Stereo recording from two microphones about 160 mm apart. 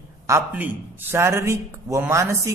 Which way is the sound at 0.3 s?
10° right (ahead or behind).